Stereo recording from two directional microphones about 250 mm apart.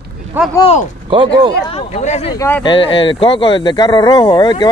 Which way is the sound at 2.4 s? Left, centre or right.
Centre.